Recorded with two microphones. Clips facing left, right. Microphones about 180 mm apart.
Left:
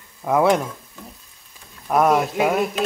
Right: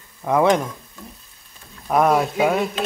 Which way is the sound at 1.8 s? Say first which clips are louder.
Even; centre (ahead or behind).